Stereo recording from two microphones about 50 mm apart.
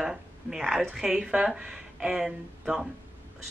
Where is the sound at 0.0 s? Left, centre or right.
Centre.